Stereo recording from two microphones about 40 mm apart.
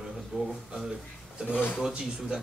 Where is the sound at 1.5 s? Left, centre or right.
Left.